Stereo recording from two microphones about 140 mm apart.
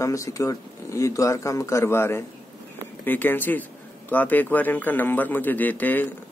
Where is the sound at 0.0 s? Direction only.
20° left (ahead or behind).